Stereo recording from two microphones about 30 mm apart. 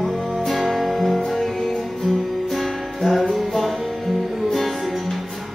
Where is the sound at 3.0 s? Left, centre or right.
Centre.